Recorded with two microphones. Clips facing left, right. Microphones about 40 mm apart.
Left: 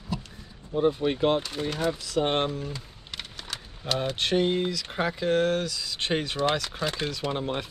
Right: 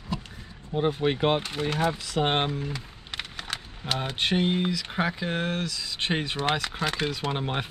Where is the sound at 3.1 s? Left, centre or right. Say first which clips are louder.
Right 3 dB; right.